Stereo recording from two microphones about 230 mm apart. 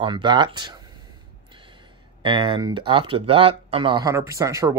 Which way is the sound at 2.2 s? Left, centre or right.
Right.